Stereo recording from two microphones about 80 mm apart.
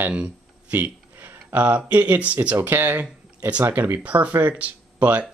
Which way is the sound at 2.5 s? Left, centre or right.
Right.